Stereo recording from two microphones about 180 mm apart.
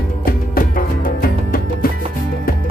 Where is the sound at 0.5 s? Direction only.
50° left (ahead or behind).